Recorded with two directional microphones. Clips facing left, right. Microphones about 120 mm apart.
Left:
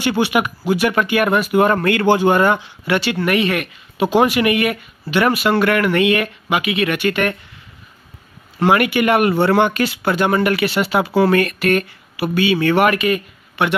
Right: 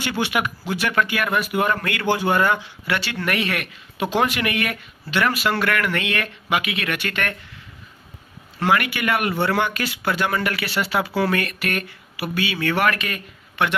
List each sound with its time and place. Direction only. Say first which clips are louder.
0.0 s speech: left 6 dB; 15° left (ahead or behind)
1.1 s speech: left 7 dB; 25° left (ahead or behind)
3.3 s speech: left 5 dB; centre (ahead or behind)
5.2 s speech: left 6 dB; 20° left (ahead or behind)
8.5 s speech: left 6 dB; 25° left (ahead or behind)
11.2 s speech: left 8 dB; 35° left (ahead or behind)
12.8 s a man's voice: left 7 dB; 10° left (ahead or behind)